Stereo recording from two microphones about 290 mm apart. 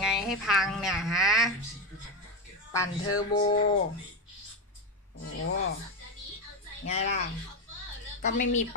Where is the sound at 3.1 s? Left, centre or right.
Centre.